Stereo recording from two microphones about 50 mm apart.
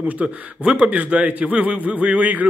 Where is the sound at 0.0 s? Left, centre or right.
Right.